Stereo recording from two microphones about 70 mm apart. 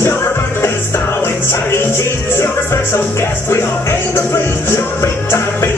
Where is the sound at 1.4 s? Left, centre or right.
Left.